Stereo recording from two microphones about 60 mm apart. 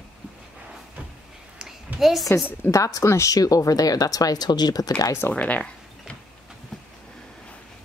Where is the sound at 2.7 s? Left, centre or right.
Left.